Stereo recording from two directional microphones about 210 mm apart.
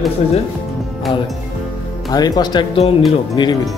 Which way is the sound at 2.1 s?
20° left (ahead or behind).